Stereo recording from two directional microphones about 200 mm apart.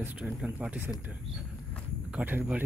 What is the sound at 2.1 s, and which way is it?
Speech, 10° right (ahead or behind).